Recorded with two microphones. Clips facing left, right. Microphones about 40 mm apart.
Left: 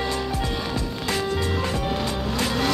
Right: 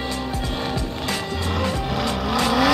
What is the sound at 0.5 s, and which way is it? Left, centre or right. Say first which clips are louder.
Music: right 2 dB; right.